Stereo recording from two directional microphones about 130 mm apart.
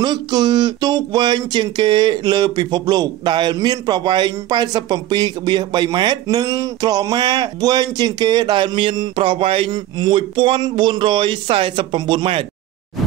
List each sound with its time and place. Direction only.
0.0 s speech: 35° right (ahead or behind)